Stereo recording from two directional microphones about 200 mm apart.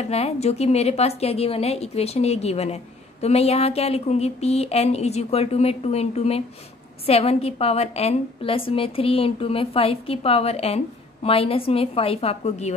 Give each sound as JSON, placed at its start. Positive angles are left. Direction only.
{"t": 0.0, "sound": "a woman's voice", "side_deg": 30}